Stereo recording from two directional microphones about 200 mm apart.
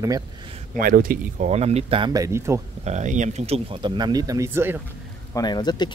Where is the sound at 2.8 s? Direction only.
35° right (ahead or behind); by 4.8 s 10° right (ahead or behind).